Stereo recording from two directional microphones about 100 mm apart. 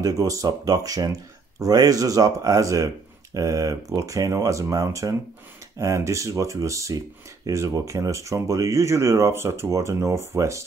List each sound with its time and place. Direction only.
0.0 s speech: 35° right (ahead or behind)